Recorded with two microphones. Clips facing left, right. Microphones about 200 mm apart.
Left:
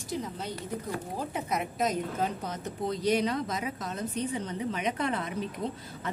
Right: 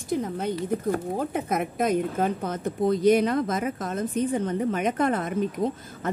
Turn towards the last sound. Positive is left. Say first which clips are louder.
# right 7 dB
turn(degrees=-50)  # may be behind; listen again after turning